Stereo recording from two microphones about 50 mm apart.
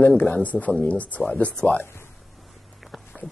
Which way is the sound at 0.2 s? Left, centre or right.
Left.